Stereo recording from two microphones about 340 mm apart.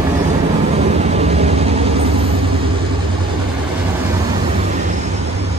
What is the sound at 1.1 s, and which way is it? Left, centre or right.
Vehicle, centre.